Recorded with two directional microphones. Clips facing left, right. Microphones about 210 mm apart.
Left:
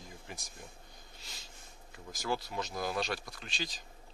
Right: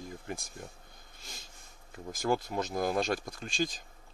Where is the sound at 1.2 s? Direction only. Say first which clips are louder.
Right 5 dB; 50° right (ahead or behind).